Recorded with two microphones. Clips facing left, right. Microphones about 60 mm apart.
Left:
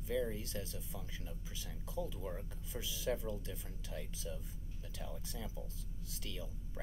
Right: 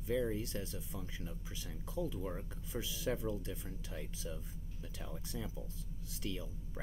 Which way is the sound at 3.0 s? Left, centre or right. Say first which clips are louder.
Right 1 dB; right.